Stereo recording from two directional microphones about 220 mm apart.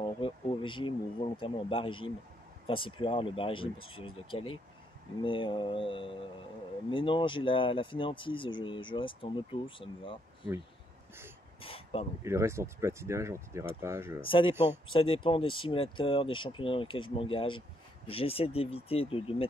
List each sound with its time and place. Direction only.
0.0 s speech: 25° left (ahead or behind)
3.7 s speech: 70° left (ahead or behind)
4.0 s speech: 25° left (ahead or behind)
11.6 s a sound: 25° left (ahead or behind)
12.2 s speech: 10° right (ahead or behind)
14.2 s speech: 25° left (ahead or behind)
14.5 s speech: 10° right (ahead or behind)
14.9 s speech: 25° left (ahead or behind)